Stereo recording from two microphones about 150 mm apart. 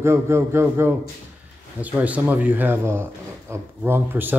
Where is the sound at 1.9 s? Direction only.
10° right (ahead or behind).